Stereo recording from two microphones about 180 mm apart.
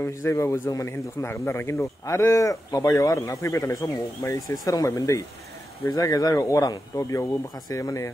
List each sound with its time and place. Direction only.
0.0 s a man's voice: 15° left (ahead or behind)